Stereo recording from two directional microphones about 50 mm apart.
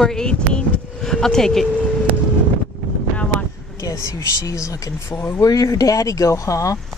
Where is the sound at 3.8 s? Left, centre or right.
Left.